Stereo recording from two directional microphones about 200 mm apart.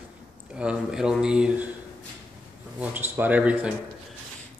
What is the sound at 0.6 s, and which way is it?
Speech, 5° right (ahead or behind).